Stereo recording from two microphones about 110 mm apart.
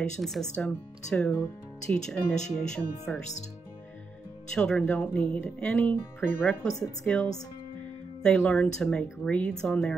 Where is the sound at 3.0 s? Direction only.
90° left.